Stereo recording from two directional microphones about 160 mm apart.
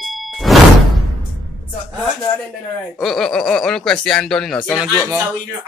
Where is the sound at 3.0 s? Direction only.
Centre (ahead or behind).